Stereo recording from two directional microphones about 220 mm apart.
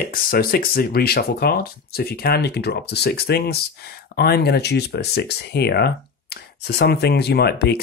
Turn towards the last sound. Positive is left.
turn(degrees=45)  # may be behind; listen again after turning